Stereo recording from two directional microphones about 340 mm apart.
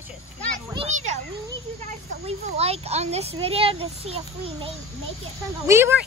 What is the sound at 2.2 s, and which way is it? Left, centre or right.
A child's voice, centre.